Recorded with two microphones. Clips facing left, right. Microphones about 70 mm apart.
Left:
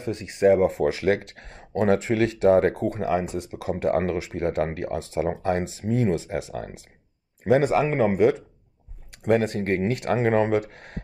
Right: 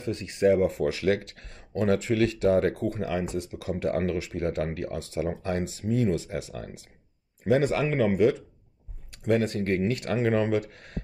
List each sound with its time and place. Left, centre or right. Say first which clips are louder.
0.0 s speech: left 3 dB; left